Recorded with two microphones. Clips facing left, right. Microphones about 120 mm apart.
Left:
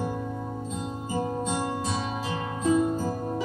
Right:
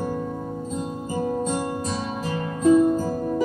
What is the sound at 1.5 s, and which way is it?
Music, 45° right (ahead or behind).